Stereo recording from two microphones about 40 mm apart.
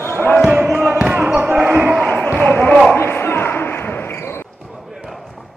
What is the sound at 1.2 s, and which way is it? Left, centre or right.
Basketball bounce, right.